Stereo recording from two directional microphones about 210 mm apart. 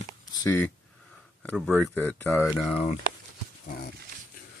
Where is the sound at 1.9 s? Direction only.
10° left (ahead or behind).